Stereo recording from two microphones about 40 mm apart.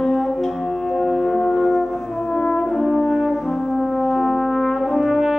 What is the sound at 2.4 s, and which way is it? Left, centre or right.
French horn, centre.